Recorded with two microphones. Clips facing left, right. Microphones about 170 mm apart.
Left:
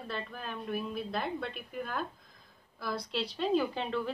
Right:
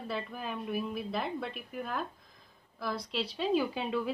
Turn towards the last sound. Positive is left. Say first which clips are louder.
# right 1 dB
turn(degrees=-5)  # may be behind; listen again after turning